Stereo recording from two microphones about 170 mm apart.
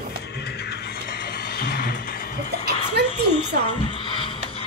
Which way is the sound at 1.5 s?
60° left (ahead or behind).